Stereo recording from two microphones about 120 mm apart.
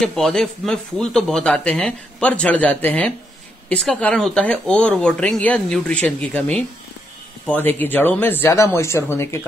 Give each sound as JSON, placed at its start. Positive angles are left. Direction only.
{"t": 0.0, "sound": "speech", "side_deg": 5}